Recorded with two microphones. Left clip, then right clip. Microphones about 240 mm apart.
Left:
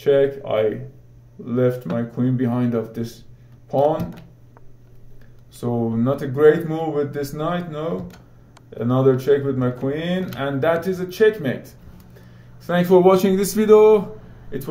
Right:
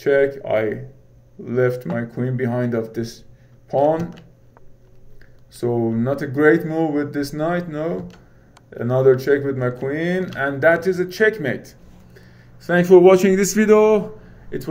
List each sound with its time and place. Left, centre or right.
0.0 s speech: right
5.6 s speech: right